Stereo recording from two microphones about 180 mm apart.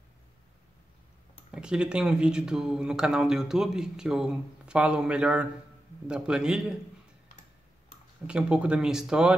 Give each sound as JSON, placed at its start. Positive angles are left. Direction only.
{"t": 1.5, "sound": "speech", "side_deg": -5}
{"t": 8.3, "sound": "speech", "side_deg": -5}